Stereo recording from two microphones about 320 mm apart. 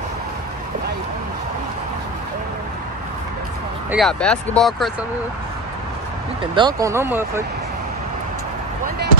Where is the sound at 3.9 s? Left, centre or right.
Centre.